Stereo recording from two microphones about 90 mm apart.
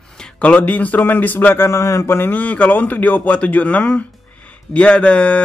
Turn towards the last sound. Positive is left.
turn(degrees=15)  # may be behind; listen again after turning